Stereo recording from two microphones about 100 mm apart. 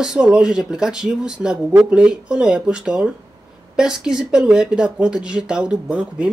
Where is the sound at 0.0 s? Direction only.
5° right (ahead or behind).